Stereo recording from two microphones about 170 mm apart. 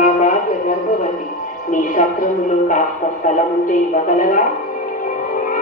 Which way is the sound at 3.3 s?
50° left (ahead or behind).